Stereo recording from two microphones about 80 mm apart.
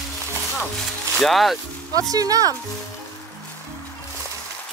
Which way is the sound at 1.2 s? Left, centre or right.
Centre.